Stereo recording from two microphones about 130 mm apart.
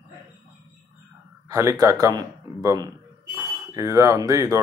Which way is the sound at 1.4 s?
25° right (ahead or behind).